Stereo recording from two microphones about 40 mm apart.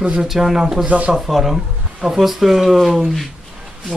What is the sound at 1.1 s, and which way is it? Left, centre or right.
Speech, centre.